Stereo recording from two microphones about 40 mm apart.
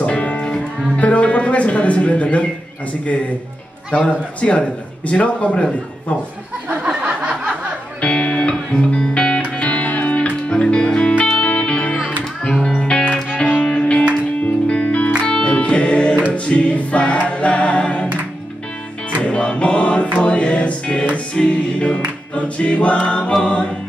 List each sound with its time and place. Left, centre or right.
0.0 s music: left
3.9 s a man's voice: left
6.9 s a sound: right
8.0 s music: left
10.5 s music: left
11.9 s music: left
16.3 s choir: left
17.3 s a capella: left
19.2 s music: left
22.3 s a man's voice: left